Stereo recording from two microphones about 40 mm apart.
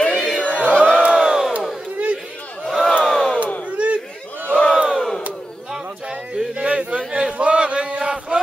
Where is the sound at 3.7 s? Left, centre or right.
Right.